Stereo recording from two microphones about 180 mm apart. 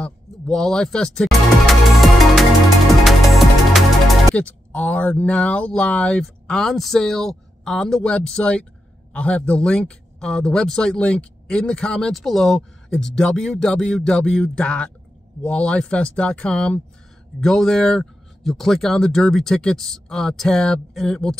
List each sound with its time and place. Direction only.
0.0 s music: 5° left (ahead or behind)
4.4 s speech: 5° left (ahead or behind)